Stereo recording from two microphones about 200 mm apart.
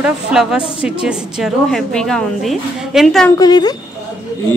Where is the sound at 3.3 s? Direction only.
20° left (ahead or behind).